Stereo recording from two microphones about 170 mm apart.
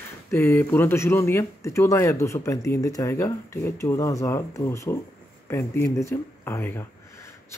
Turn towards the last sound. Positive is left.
turn(degrees=15)  # may be behind; listen again after turning